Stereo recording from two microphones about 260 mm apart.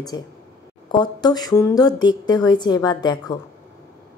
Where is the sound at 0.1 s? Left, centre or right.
Centre.